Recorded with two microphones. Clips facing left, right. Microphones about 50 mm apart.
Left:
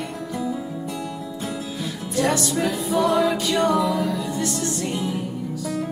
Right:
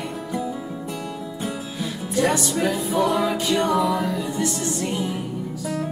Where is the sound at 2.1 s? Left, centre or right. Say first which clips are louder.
Even; centre.